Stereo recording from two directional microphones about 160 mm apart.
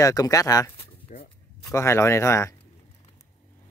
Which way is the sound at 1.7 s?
15° left (ahead or behind).